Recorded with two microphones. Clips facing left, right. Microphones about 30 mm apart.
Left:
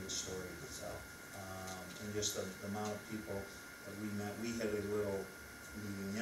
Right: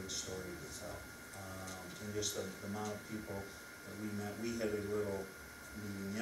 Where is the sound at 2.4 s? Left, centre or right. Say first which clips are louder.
Even; centre.